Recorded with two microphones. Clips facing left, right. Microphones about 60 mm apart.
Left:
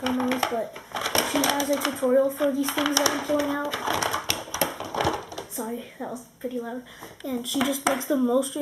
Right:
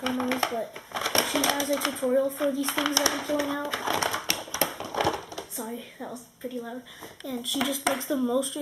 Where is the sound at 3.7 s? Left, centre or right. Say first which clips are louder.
Left 1 dB; centre.